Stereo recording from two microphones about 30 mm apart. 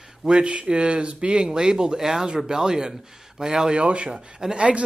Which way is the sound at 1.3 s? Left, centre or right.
Right.